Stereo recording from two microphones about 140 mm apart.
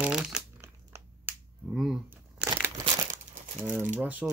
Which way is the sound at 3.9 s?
10° right (ahead or behind).